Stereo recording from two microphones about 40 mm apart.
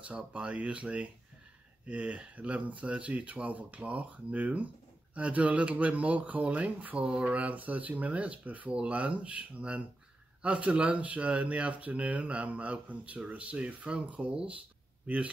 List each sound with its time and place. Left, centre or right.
0.3 s speech: right
7.0 s mantra: right
7.3 s speech: right